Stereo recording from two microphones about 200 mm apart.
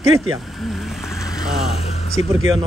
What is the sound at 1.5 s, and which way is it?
Speech, centre (ahead or behind).